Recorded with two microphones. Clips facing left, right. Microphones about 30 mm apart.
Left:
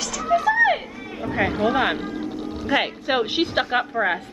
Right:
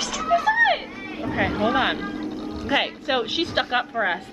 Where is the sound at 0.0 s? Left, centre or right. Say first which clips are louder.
Even; right.